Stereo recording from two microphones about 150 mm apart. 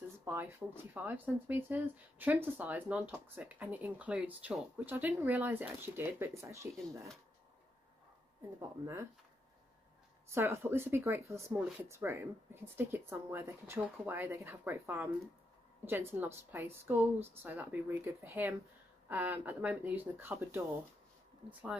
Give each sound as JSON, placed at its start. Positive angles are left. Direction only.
{"t": 0.2, "sound": "speech", "side_deg": -15}
{"t": 8.5, "sound": "speech", "side_deg": -15}
{"t": 10.3, "sound": "speech", "side_deg": -15}